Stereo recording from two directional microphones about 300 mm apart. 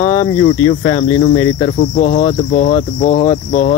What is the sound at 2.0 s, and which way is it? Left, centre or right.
Cricket, left.